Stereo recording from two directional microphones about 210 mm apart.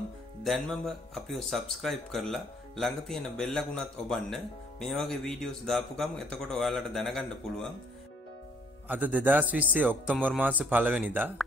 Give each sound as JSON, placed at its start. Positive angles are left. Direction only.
{"t": 0.4, "sound": "speech", "side_deg": 0}
{"t": 8.8, "sound": "speech", "side_deg": -10}